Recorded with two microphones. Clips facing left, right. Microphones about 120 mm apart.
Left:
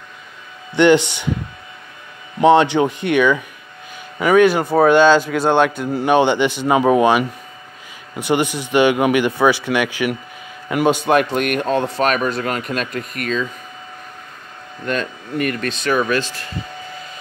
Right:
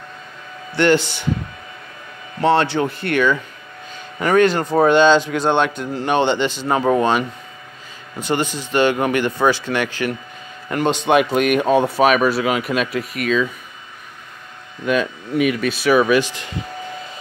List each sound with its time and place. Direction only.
0.7 s a man's voice: 20° left (ahead or behind)
2.4 s a man's voice: 15° left (ahead or behind); by 13.5 s 5° right (ahead or behind)
14.9 s speech: 5° right (ahead or behind)